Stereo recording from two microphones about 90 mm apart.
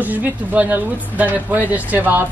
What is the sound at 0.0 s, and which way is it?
Speech, 20° right (ahead or behind).